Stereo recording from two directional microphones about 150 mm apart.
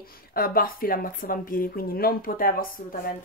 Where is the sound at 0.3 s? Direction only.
80° left.